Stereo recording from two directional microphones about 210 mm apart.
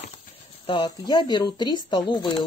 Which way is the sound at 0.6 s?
20° left (ahead or behind).